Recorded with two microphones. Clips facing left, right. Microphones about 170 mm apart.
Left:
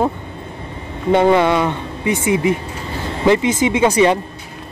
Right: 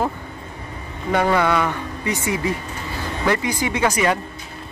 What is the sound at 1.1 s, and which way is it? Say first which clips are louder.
A man's voice: left 5 dB; 20° left (ahead or behind).